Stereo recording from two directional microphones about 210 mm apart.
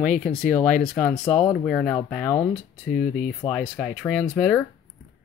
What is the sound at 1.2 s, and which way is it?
Speech, 20° left (ahead or behind).